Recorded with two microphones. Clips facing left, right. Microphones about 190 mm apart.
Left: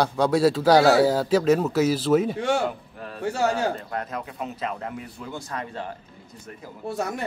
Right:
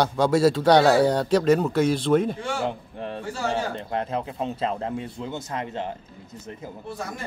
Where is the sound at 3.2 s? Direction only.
70° left (ahead or behind).